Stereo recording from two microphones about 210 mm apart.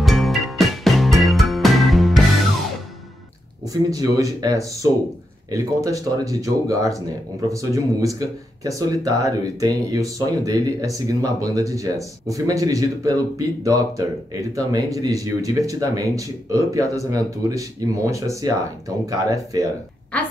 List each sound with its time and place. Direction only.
0.0 s music: centre (ahead or behind)
3.6 s speech: 15° right (ahead or behind)